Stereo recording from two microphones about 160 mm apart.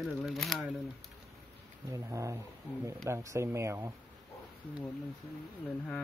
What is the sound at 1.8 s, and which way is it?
Speech, 20° right (ahead or behind).